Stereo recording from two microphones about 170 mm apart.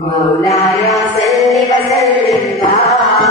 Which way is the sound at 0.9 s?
Centre (ahead or behind).